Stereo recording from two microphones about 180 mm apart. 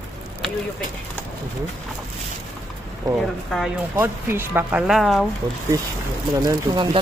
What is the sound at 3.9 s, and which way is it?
Speech, 15° right (ahead or behind).